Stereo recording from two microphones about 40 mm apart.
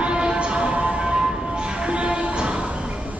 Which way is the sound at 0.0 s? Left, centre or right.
Right.